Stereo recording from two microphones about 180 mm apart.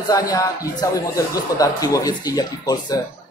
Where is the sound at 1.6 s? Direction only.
20° left (ahead or behind).